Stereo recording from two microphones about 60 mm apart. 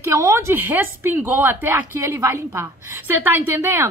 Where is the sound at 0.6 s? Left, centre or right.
Right.